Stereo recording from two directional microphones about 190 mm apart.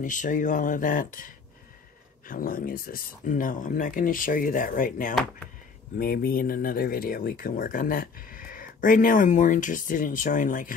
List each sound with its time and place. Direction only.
0.0 s speech: 40° left (ahead or behind)